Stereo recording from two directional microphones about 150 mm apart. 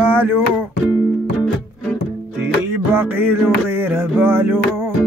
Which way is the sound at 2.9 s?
15° right (ahead or behind).